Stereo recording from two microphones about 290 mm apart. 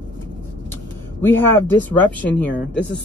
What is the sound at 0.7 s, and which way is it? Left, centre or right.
Vehicle, centre.